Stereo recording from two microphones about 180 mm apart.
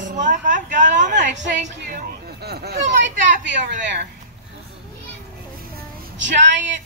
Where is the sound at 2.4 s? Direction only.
60° right (ahead or behind).